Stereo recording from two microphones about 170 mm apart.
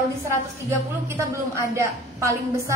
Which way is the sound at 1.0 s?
15° right (ahead or behind).